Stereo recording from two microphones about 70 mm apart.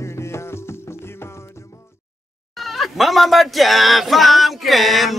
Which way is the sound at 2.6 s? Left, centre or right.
Centre.